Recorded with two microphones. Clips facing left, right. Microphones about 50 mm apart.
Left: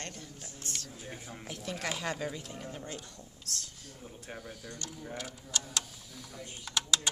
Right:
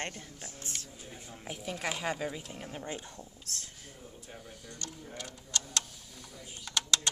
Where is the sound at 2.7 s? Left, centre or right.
Right.